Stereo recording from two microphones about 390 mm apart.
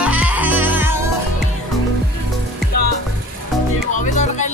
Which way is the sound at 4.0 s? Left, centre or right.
Centre.